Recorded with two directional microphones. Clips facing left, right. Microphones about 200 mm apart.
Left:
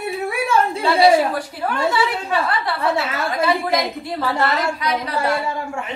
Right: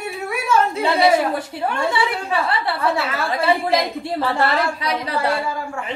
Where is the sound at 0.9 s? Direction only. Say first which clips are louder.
Left 3 dB; 25° right (ahead or behind).